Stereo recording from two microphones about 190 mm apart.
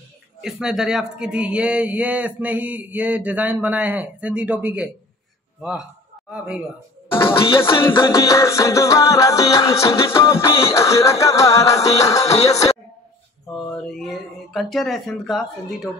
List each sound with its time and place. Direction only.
0.4 s speech: 5° right (ahead or behind)
1.1 s mantra: 5° right (ahead or behind)
5.6 s speech: 5° right (ahead or behind)
7.7 s music: 20° left (ahead or behind)
13.7 s speech: 5° left (ahead or behind)